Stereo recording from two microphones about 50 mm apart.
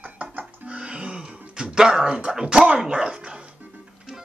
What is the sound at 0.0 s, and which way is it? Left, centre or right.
Music, right.